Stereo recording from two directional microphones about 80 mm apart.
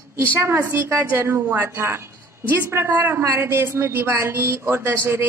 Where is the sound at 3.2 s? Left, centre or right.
Right.